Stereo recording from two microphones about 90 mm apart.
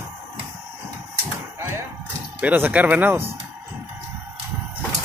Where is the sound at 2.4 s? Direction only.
20° right (ahead or behind).